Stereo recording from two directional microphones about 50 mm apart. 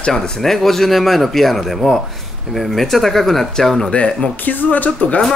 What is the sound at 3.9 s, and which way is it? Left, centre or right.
Speech, left.